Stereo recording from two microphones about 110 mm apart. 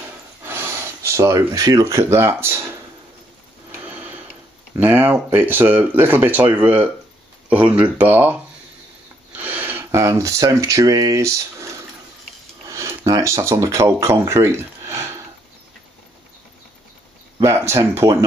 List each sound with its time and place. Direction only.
0.4 s speech: 20° right (ahead or behind)
3.8 s tick-tock: 15° right (ahead or behind)
4.7 s speech: 20° right (ahead or behind)
9.4 s speech: 15° right (ahead or behind)
17.4 s speech: 25° right (ahead or behind)